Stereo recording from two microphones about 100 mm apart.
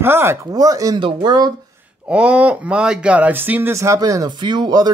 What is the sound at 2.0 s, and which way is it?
A man's voice, 15° right (ahead or behind).